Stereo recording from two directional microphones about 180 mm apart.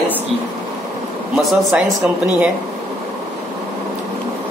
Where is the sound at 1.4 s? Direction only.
Centre (ahead or behind).